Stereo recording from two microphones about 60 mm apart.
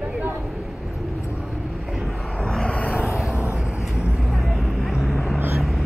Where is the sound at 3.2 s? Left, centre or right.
Centre.